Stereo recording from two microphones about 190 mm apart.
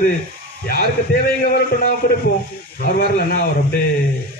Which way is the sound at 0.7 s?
50° left (ahead or behind).